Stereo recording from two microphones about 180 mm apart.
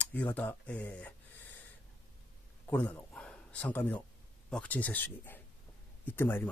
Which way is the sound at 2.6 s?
10° left (ahead or behind).